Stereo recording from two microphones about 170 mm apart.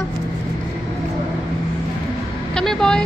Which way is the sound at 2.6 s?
5° left (ahead or behind).